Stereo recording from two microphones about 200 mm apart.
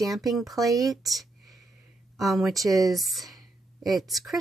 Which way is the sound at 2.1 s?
Centre (ahead or behind).